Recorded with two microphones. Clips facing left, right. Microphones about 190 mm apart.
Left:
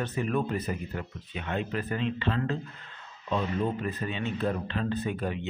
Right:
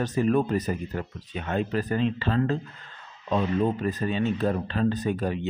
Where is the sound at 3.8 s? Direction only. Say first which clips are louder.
Right 6 dB; 40° right (ahead or behind).